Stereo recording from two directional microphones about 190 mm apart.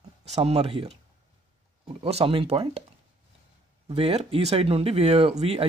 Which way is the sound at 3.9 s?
30° right (ahead or behind).